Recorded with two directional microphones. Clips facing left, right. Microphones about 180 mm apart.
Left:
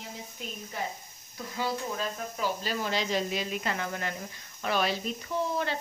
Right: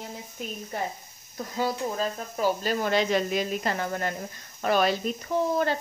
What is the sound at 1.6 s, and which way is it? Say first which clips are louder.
Speech: right 4 dB; 45° right (ahead or behind).